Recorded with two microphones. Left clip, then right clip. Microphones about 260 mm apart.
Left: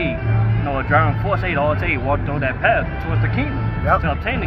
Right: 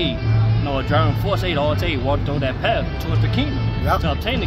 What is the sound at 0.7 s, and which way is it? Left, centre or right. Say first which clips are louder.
Speech: left 4 dB; right.